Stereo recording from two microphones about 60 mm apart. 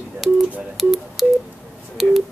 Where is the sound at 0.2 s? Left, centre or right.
Centre.